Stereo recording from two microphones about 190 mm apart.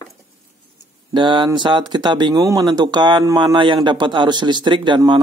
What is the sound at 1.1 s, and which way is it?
Speech, 25° right (ahead or behind).